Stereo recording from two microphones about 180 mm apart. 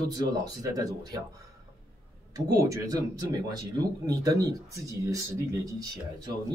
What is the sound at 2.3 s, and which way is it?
A man's voice, 20° right (ahead or behind).